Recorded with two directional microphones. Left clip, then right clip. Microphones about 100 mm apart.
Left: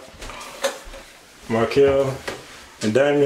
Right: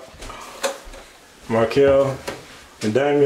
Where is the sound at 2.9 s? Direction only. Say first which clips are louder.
Even; 20° left (ahead or behind).